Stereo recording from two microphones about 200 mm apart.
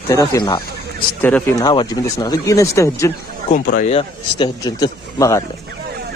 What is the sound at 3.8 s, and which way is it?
Speech, 30° left (ahead or behind).